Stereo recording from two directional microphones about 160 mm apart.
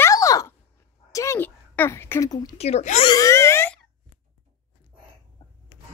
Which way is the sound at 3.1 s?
20° left (ahead or behind).